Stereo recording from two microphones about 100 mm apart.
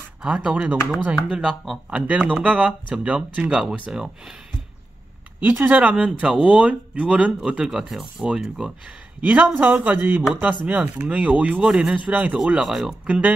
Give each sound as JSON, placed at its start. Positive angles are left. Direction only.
{"t": 0.2, "sound": "speech", "side_deg": -10}
{"t": 5.4, "sound": "speech", "side_deg": -20}
{"t": 9.2, "sound": "speech", "side_deg": -15}
{"t": 12.5, "sound": "speech", "side_deg": -5}
{"t": 13.0, "sound": "speech", "side_deg": -15}